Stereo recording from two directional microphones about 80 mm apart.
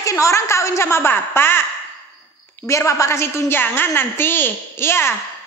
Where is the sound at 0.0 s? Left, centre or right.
Left.